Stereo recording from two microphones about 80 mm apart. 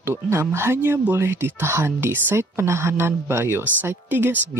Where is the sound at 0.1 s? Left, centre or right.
Right.